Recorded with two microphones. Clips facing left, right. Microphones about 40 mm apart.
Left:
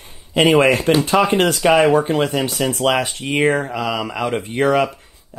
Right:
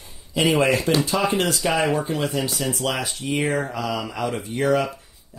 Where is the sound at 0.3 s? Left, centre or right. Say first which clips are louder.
Left 6 dB; left.